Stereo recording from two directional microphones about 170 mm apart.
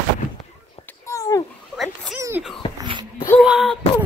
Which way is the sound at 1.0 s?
20° left (ahead or behind).